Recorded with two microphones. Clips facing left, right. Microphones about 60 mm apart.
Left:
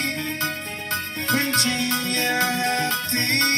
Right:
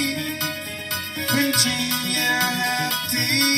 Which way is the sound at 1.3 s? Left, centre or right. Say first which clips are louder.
Right 1 dB; left.